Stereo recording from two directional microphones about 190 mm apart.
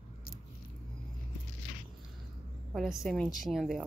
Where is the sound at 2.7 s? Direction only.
Centre (ahead or behind).